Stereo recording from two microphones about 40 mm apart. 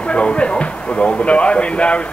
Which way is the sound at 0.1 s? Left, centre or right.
Left.